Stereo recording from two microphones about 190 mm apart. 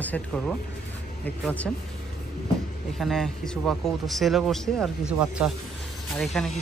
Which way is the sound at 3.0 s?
Centre (ahead or behind).